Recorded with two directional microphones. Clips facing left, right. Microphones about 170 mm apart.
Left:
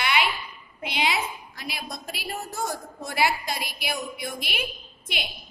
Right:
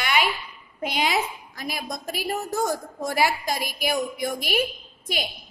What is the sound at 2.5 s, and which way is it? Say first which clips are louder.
Speech: right 6 dB; 90° right.